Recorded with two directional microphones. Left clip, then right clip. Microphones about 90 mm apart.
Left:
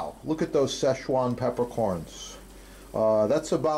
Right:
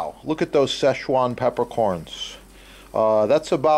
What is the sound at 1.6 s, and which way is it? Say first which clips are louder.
Speech: right 6 dB; 5° left (ahead or behind).